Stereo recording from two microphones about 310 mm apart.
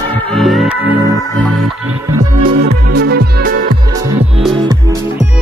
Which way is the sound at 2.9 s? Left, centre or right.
Right.